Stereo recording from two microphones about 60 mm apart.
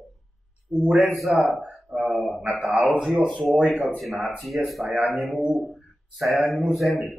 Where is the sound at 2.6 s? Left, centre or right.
Centre.